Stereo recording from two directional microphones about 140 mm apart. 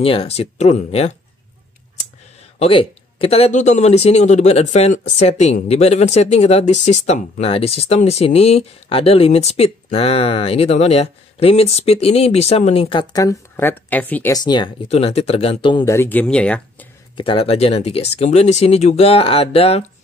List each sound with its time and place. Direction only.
0.0 s speech: 45° left (ahead or behind)
2.6 s speech: 40° left (ahead or behind)
13.1 s speech: 25° left (ahead or behind)
14.3 s speech: 30° left (ahead or behind)
14.9 s speech: 45° left (ahead or behind)
15.8 s speech: 20° left (ahead or behind)
17.2 s speech: 40° left (ahead or behind)